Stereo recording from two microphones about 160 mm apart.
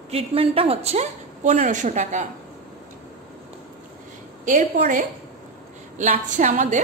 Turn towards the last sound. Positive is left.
turn(degrees=-50)  # may be behind; listen again after turning